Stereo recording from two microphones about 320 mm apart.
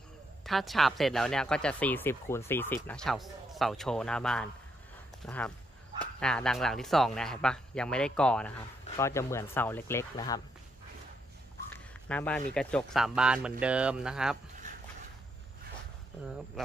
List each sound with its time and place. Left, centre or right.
0.5 s speech: centre
11.7 s speech: centre
14.6 s a sound: right
16.6 s speech: centre